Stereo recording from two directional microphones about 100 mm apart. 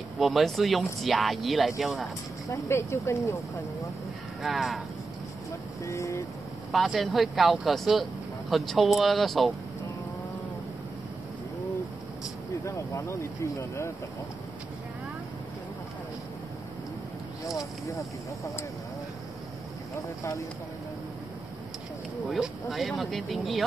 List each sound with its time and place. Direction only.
0.2 s speech: centre (ahead or behind)
2.4 s speech: 30° left (ahead or behind)
4.4 s speech: centre (ahead or behind)
5.9 s speech: 30° left (ahead or behind)
6.7 s speech: centre (ahead or behind)
13.6 s speech: 25° left (ahead or behind)
17.6 s speech: 30° left (ahead or behind)
22.3 s speech: centre (ahead or behind)